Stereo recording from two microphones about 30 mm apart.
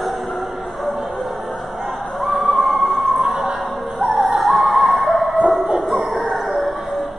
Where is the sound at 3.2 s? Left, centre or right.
Centre.